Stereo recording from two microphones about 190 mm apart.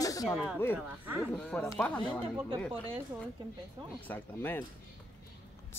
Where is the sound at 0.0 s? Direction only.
20° left (ahead or behind).